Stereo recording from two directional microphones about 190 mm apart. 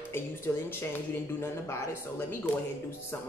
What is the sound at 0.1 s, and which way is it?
A woman's voice, 10° left (ahead or behind).